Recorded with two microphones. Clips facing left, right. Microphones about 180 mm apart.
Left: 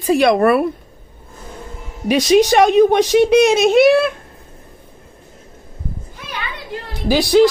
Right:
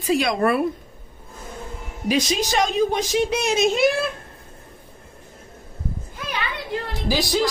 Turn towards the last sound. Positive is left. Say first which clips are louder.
# left 8 dB
turn(degrees=60)  # may be behind; listen again after turning